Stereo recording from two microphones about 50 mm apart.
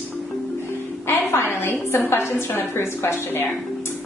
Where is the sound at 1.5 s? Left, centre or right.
Left.